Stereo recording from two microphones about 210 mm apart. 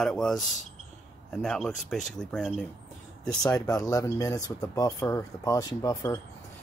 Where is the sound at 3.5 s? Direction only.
15° left (ahead or behind).